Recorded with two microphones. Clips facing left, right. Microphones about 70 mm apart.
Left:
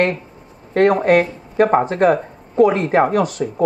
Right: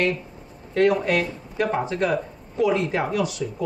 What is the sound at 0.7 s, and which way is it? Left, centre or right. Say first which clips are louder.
Speech: left 6 dB; left.